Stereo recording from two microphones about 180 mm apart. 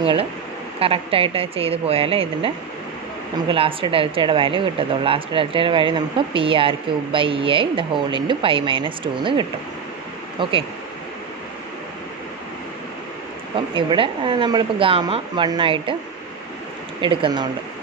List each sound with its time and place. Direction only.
0.0 s speech: 30° right (ahead or behind)
13.7 s speech: 30° right (ahead or behind)
17.0 s speech: 30° right (ahead or behind)